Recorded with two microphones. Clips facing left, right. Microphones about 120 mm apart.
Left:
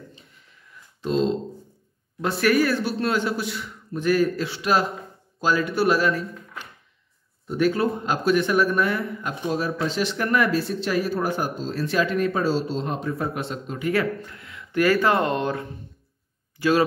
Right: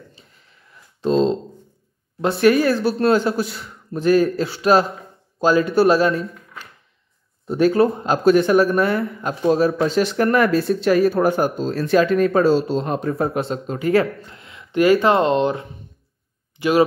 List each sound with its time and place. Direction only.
1.0 s a sound: 35° right (ahead or behind)
2.2 s a man's voice: 25° right (ahead or behind)
7.4 s a man's voice: 35° right (ahead or behind)
9.8 s speech: 50° right (ahead or behind)
13.2 s a man's voice: 35° right (ahead or behind)
14.2 s speech: 25° right (ahead or behind)